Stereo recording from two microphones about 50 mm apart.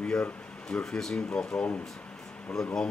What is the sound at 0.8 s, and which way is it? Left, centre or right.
Speech, centre.